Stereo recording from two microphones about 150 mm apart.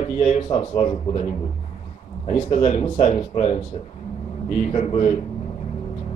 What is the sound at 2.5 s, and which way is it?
Speech, 40° left (ahead or behind).